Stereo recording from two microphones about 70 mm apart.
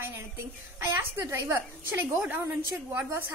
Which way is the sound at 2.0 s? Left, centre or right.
Right.